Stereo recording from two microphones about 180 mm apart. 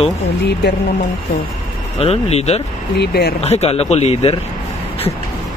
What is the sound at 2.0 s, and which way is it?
Speech, 35° left (ahead or behind).